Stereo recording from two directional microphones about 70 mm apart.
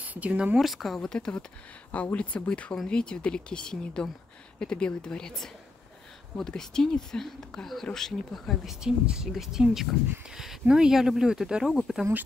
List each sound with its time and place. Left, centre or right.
0.0 s speech: right
0.6 s speech: centre
6.3 s speech: centre
8.8 s speech: centre